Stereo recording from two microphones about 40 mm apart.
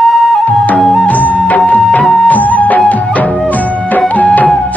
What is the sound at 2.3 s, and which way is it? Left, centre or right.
Music, left.